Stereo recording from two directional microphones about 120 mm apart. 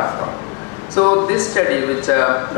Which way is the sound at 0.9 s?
25° left (ahead or behind).